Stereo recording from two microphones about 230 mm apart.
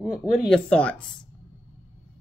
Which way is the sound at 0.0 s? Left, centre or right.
Centre.